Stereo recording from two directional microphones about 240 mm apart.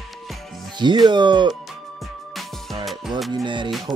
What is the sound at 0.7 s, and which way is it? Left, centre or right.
Speech, centre.